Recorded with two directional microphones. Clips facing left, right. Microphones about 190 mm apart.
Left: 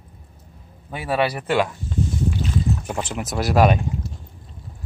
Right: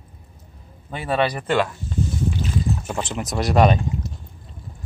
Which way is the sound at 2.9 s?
10° left (ahead or behind).